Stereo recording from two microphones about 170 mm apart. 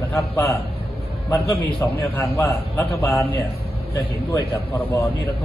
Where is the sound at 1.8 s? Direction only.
15° left (ahead or behind).